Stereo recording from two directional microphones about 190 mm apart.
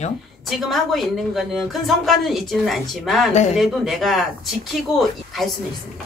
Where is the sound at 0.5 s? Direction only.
Centre (ahead or behind).